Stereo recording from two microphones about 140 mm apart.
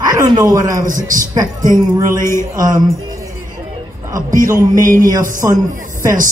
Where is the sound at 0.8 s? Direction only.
70° right (ahead or behind).